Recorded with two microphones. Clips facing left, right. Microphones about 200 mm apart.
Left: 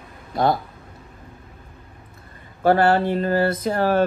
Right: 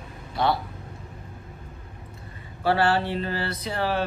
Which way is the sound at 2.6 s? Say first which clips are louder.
Left 6 dB; 45° left (ahead or behind).